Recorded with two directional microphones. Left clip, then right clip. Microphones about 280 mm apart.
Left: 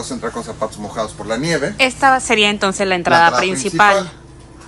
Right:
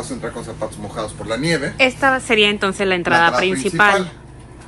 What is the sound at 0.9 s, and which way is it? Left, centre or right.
Speech, left.